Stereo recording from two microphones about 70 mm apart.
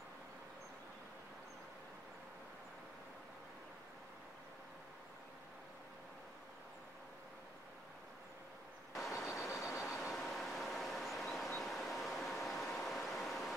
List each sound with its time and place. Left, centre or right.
9.1 s vehicle: left
9.8 s vehicle: centre
12.7 s a sound: centre